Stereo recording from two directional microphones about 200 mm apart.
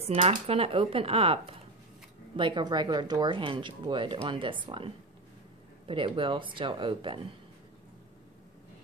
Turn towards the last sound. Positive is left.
turn(degrees=-25)  # may be behind; listen again after turning